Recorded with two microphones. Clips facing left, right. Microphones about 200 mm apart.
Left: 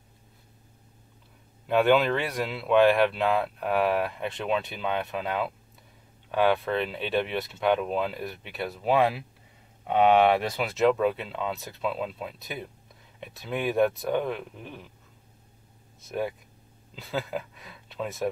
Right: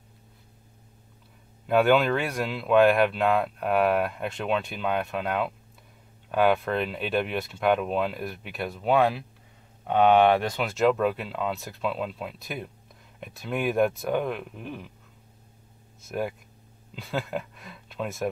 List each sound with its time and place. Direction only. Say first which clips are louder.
1.7 s speech: right 1 dB; centre (ahead or behind)
16.0 s speech: even; centre (ahead or behind)